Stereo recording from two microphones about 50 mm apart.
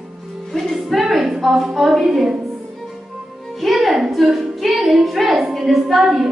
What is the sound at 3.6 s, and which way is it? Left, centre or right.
A woman's voice, centre.